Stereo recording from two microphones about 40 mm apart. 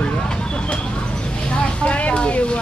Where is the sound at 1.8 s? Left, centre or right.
Left.